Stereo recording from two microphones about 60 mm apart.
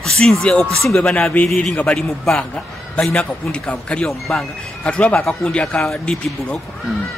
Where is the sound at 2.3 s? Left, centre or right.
Centre.